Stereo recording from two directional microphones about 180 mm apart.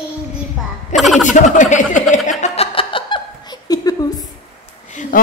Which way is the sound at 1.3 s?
45° left (ahead or behind).